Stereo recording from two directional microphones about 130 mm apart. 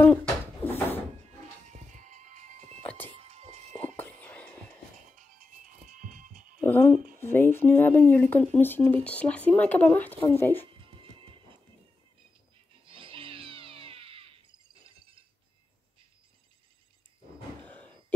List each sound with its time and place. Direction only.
0.0 s bird: 10° left (ahead or behind)
1.7 s music: 70° right (ahead or behind)
2.8 s music: 15° left (ahead or behind)
3.1 s music: 55° right (ahead or behind)
3.7 s music: 15° left (ahead or behind)
5.9 s music: 80° right
6.6 s a sound: 15° left (ahead or behind)
7.2 s speech: 15° left (ahead or behind)
10.8 s music: 45° right (ahead or behind)
12.8 s a sound: 45° right (ahead or behind)
17.6 s a sound: 10° left (ahead or behind)